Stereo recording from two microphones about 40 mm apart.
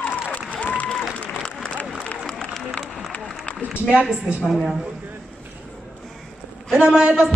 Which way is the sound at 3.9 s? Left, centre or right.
Right.